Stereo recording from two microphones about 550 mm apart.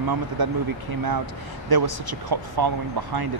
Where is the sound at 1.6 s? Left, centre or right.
Right.